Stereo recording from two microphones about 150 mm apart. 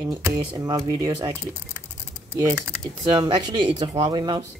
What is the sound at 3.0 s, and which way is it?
Speech, 30° right (ahead or behind).